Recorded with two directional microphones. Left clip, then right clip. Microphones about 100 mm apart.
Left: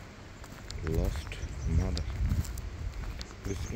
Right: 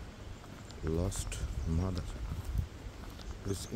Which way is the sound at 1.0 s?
35° right (ahead or behind).